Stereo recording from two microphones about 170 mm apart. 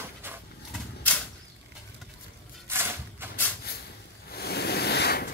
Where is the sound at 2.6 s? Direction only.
15° right (ahead or behind).